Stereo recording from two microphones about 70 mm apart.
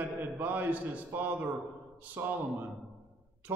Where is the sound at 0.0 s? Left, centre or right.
Right.